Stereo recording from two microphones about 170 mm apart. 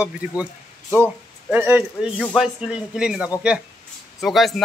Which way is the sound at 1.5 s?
10° right (ahead or behind).